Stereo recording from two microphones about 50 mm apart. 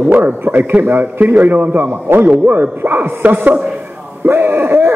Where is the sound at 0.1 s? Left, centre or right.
Right.